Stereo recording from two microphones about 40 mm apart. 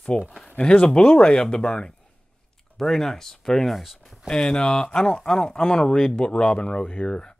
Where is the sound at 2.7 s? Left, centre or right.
Centre.